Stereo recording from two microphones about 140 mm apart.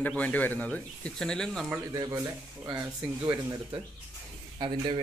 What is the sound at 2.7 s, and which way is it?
Speech, 25° right (ahead or behind).